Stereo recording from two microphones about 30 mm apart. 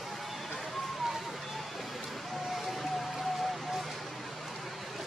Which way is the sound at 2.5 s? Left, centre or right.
Centre.